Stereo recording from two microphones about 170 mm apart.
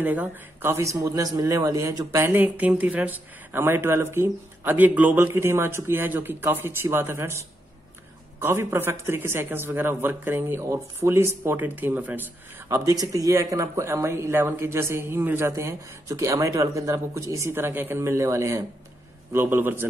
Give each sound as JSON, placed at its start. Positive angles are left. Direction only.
{"t": 0.0, "sound": "speech", "side_deg": -10}